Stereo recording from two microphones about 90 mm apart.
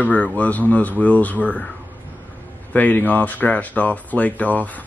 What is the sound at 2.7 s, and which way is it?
Speech, 20° left (ahead or behind).